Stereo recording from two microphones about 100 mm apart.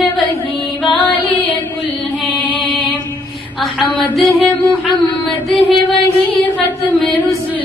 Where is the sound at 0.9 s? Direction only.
15° left (ahead or behind).